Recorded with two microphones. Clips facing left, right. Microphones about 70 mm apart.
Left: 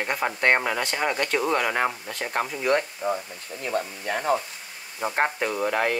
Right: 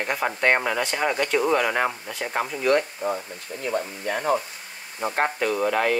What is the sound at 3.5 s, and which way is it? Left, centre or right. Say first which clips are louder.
Speech: right 2 dB; right.